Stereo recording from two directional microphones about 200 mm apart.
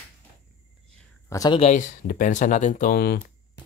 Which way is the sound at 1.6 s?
40° left (ahead or behind).